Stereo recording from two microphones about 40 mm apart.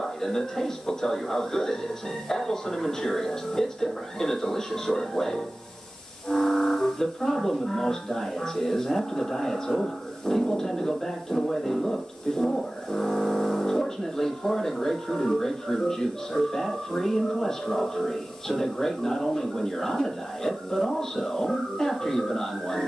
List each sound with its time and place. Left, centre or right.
0.2 s speech: centre